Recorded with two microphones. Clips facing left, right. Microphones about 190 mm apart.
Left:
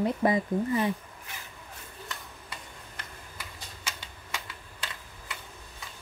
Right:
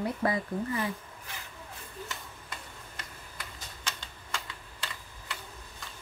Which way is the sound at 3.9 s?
10° left (ahead or behind).